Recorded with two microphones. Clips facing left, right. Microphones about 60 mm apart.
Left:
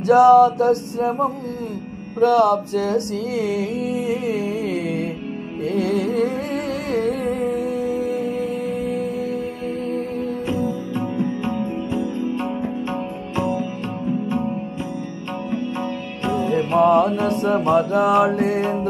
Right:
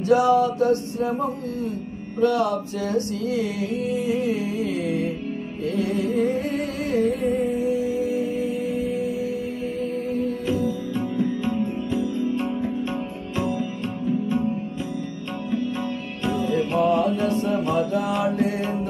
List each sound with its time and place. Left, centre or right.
0.1 s mantra: left
2.1 s music: left
5.8 s music: left
11.1 s music: left
16.3 s music: left